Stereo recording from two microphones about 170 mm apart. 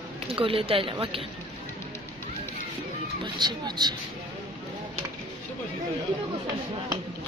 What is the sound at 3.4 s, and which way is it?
Speech, 25° right (ahead or behind).